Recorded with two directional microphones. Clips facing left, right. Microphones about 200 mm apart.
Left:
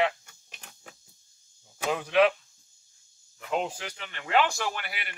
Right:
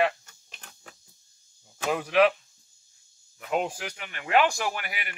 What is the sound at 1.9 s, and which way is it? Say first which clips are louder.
Speech: right 1 dB; 10° right (ahead or behind).